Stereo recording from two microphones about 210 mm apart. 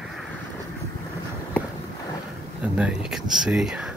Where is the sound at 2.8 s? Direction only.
5° right (ahead or behind).